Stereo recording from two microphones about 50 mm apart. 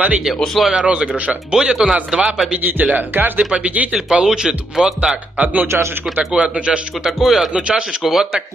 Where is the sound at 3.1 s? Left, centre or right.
Right.